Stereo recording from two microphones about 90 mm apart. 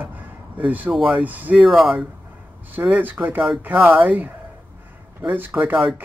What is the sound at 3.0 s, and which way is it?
Speech, 20° right (ahead or behind).